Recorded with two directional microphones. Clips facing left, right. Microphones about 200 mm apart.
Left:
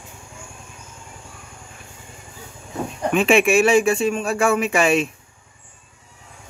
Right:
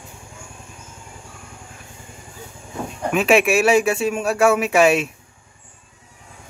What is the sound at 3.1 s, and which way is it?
Speech, 5° right (ahead or behind).